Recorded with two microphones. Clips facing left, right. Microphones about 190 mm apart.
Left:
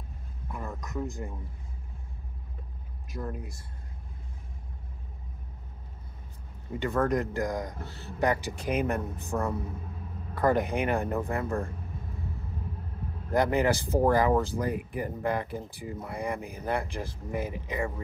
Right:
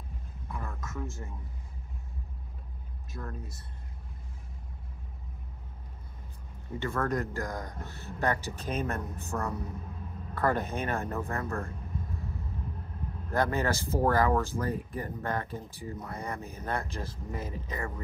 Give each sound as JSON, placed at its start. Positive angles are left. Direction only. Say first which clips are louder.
{"t": 0.5, "sound": "a sound", "louder": "left 3 dB", "side_deg": 20}
{"t": 3.1, "sound": "speech", "louder": "left 5 dB", "side_deg": 15}
{"t": 6.8, "sound": "speech", "louder": "left 4 dB", "side_deg": 15}
{"t": 13.3, "sound": "speech", "louder": "left 4 dB", "side_deg": 15}